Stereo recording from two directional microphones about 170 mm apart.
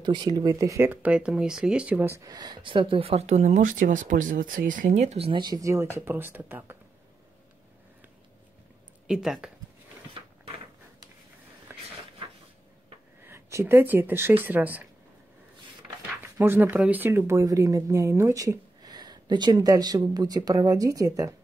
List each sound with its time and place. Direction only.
0.0 s speech: 25° right (ahead or behind)
9.0 s speech: 5° right (ahead or behind)
10.1 s a sound: 30° right (ahead or behind)
13.2 s speech: 15° right (ahead or behind)
16.3 s speech: 15° right (ahead or behind)